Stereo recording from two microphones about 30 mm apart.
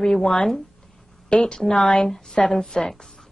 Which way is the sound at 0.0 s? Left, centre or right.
Left.